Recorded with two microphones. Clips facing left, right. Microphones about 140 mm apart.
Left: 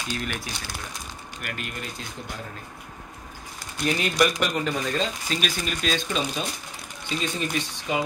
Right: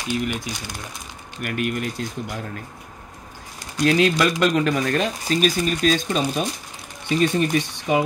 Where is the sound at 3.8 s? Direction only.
90° right; by 5.1 s 65° right (ahead or behind).